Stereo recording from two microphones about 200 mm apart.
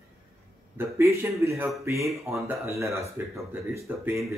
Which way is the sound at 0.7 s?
10° right (ahead or behind).